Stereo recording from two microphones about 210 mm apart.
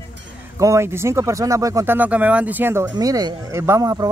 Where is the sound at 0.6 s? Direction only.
15° right (ahead or behind).